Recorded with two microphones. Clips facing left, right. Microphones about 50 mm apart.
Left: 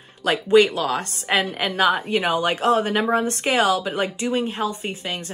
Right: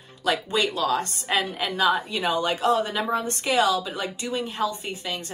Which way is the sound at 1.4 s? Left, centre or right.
Left.